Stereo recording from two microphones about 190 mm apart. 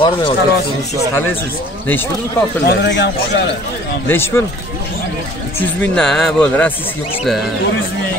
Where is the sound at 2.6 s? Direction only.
60° left (ahead or behind).